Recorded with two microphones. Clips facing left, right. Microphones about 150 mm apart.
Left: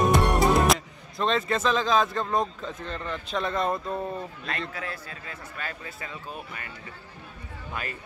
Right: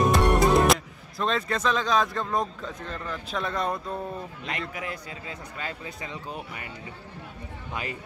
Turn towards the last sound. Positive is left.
turn(degrees=-15)  # may be behind; listen again after turning